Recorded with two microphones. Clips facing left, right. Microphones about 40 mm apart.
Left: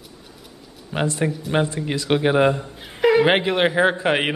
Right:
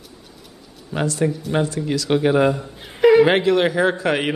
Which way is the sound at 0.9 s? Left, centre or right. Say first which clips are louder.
Right 2 dB; left.